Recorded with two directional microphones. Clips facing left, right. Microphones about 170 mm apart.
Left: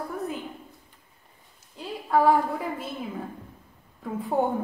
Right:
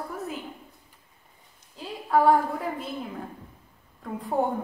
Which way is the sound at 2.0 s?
Centre (ahead or behind).